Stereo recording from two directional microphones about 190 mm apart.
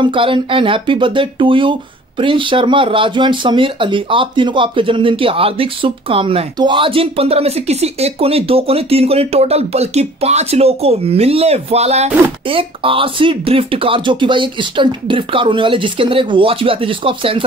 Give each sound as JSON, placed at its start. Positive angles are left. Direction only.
{"t": 0.0, "sound": "speech", "side_deg": -25}